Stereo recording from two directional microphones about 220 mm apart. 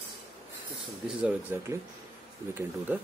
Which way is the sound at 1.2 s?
5° right (ahead or behind).